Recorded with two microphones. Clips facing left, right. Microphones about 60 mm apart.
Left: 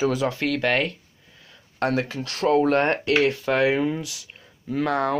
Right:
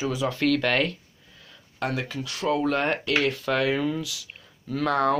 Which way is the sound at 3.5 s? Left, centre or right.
Left.